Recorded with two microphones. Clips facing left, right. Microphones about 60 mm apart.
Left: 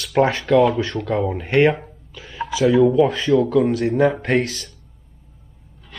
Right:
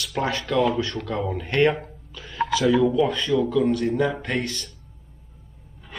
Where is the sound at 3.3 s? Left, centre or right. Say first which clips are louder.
Left 5 dB; left.